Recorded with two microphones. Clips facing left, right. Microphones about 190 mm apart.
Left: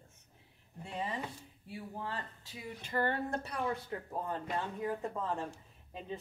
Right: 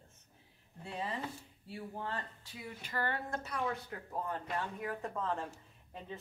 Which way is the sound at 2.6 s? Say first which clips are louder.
Left 4 dB; 25° left (ahead or behind).